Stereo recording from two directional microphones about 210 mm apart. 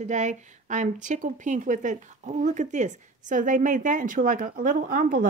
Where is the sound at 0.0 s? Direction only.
35° right (ahead or behind).